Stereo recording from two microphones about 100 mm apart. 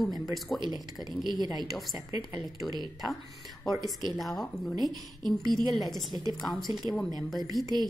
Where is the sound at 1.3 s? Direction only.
45° right (ahead or behind).